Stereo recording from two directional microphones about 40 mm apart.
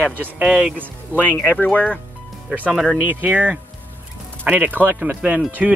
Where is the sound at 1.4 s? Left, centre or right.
Left.